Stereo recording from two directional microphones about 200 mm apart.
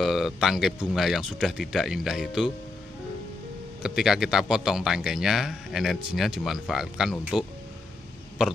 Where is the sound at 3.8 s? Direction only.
Centre (ahead or behind).